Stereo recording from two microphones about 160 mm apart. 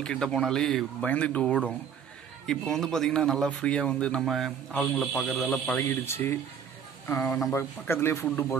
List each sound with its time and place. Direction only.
0.0 s a man's voice: 5° left (ahead or behind)